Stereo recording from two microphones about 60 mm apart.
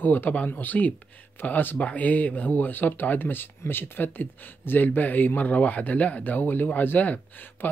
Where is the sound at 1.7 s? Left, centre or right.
Left.